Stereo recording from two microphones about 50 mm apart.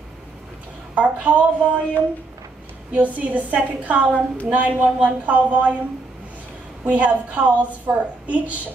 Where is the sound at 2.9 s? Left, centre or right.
Right.